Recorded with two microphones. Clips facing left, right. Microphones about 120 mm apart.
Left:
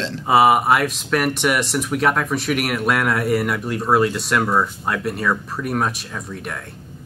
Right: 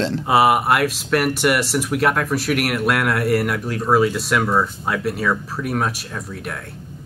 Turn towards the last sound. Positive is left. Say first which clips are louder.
# even
turn(degrees=0)  # may be behind; listen again after turning